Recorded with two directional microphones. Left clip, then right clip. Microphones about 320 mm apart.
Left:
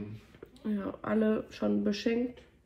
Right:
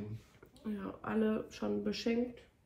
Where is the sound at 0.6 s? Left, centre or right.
Centre.